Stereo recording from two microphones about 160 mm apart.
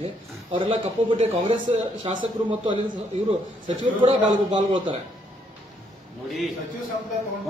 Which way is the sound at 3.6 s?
35° right (ahead or behind).